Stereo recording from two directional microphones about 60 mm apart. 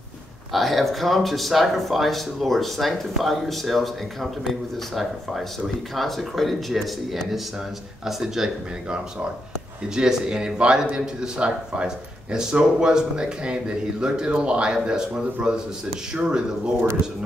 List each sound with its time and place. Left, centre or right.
0.5 s speech: centre
9.9 s speech: centre
16.2 s speech: centre